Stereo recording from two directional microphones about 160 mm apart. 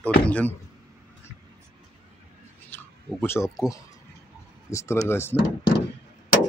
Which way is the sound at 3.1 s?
15° left (ahead or behind).